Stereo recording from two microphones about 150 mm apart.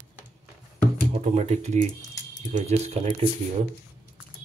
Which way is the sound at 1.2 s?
50° right (ahead or behind).